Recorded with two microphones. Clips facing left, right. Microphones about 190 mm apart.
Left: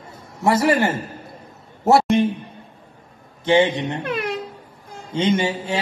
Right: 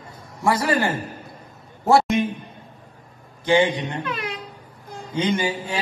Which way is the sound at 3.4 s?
25° left (ahead or behind).